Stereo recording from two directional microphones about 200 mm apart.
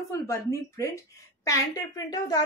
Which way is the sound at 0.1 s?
15° left (ahead or behind).